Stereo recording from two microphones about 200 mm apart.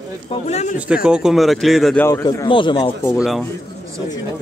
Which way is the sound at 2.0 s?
15° left (ahead or behind).